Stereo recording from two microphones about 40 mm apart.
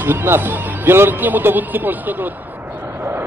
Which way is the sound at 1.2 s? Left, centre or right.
Right.